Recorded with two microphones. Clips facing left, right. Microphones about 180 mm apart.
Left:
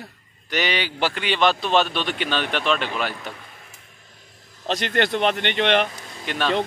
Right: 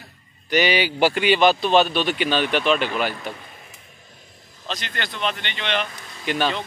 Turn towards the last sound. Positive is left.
turn(degrees=-5)  # may be behind; listen again after turning